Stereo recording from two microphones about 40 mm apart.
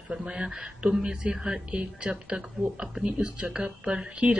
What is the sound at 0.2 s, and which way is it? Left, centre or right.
A woman's voice, right.